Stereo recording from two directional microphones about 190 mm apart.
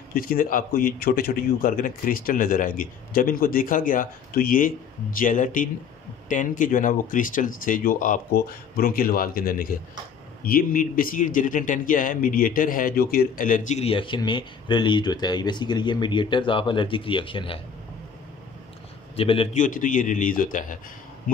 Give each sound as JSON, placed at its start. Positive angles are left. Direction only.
{"t": 0.1, "sound": "a man's voice", "side_deg": 50}
{"t": 19.1, "sound": "speech", "side_deg": 30}
{"t": 19.6, "sound": "a man's voice", "side_deg": 45}